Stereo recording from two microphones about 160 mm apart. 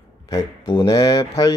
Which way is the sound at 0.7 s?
25° left (ahead or behind).